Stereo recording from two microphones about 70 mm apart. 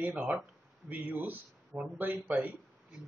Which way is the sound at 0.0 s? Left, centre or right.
Right.